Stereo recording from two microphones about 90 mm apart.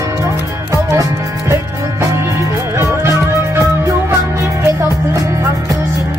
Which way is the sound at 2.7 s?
30° right (ahead or behind).